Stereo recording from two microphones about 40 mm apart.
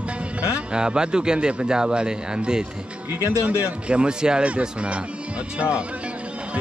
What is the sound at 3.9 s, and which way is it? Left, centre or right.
A man's voice, right.